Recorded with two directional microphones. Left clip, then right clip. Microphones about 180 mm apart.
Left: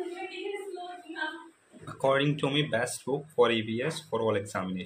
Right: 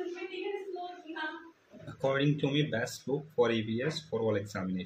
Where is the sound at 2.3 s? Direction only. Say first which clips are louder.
Left 3 dB; 20° right (ahead or behind).